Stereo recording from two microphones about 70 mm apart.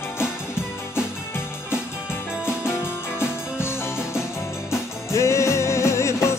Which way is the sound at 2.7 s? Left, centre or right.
Left.